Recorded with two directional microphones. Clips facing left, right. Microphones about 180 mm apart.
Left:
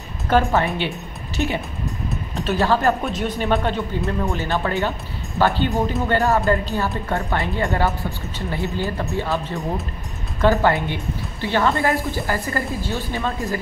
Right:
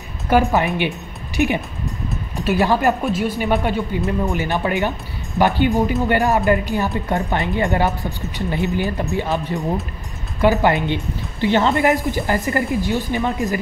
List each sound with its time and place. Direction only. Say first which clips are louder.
0.3 s speech: right 2 dB; 10° right (ahead or behind)